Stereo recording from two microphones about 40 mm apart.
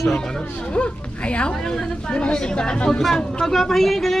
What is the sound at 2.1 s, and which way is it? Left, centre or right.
Speech, left.